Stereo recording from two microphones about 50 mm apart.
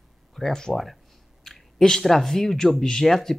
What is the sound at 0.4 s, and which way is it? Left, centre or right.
Speech, centre.